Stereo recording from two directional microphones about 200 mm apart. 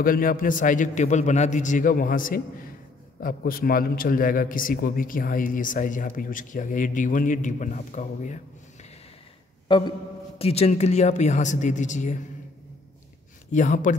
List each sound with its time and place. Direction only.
0.0 s a man's voice: 45° left (ahead or behind)
9.7 s a man's voice: 20° left (ahead or behind); by 12.2 s 40° left (ahead or behind)
13.5 s a man's voice: 40° left (ahead or behind)